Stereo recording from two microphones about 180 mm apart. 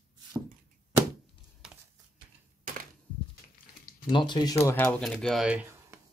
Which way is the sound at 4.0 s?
25° left (ahead or behind).